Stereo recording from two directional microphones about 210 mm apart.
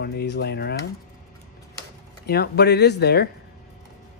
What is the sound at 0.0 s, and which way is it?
Speech, 50° left (ahead or behind).